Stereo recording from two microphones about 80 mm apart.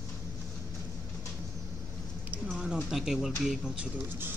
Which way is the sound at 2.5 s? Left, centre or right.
Centre.